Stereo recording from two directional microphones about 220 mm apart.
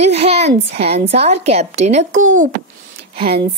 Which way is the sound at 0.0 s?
25° right (ahead or behind).